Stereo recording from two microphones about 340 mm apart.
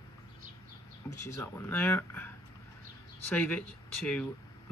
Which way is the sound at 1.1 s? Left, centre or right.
Centre.